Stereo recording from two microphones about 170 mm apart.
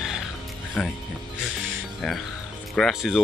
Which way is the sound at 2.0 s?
Centre (ahead or behind).